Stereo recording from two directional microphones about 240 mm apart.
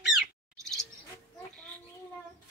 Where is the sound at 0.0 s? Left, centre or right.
Centre.